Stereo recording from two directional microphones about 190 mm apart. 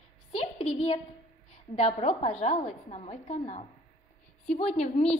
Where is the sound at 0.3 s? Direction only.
30° left (ahead or behind).